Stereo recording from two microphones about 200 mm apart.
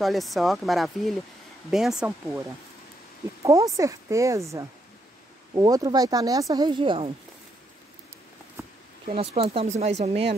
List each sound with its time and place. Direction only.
0.0 s speech: centre (ahead or behind)
2.0 s speech: 15° right (ahead or behind)
3.4 s speech: 15° right (ahead or behind)
9.0 s speech: 30° right (ahead or behind)